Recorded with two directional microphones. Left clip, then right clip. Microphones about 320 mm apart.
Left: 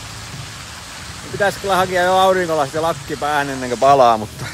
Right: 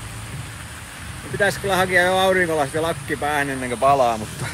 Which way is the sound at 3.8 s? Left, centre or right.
Left.